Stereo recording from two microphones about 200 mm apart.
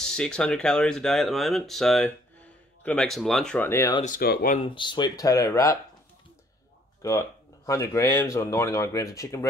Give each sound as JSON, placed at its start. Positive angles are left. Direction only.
{"t": 0.0, "sound": "speech", "side_deg": 5}
{"t": 4.0, "sound": "speech", "side_deg": 45}
{"t": 4.6, "sound": "speech", "side_deg": 25}
{"t": 7.0, "sound": "speech", "side_deg": 15}